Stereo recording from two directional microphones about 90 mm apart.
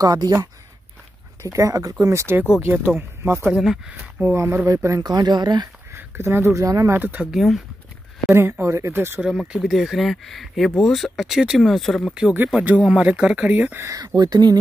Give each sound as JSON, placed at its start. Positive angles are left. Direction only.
{"t": 0.0, "sound": "speech", "side_deg": -45}
{"t": 3.5, "sound": "speech", "side_deg": -5}
{"t": 4.0, "sound": "speech", "side_deg": -25}
{"t": 5.0, "sound": "speech", "side_deg": -50}
{"t": 5.9, "sound": "speech", "side_deg": -30}
{"t": 7.0, "sound": "speech", "side_deg": -20}
{"t": 7.2, "sound": "speech", "side_deg": 0}
{"t": 8.3, "sound": "speech", "side_deg": -25}
{"t": 9.2, "sound": "speech", "side_deg": -10}
{"t": 12.1, "sound": "speech", "side_deg": -10}
{"t": 13.8, "sound": "speech", "side_deg": -45}